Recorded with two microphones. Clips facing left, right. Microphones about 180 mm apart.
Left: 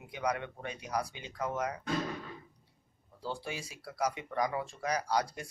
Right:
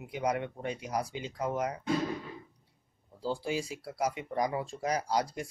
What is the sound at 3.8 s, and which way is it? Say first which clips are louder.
Speech: right 2 dB; 25° right (ahead or behind).